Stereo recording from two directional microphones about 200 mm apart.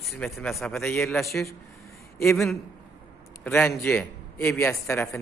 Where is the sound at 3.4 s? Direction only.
10° left (ahead or behind).